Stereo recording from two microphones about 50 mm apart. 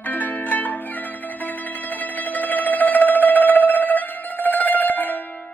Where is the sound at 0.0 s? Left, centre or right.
Left.